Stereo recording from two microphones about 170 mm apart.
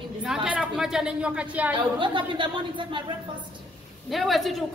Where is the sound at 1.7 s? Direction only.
30° right (ahead or behind).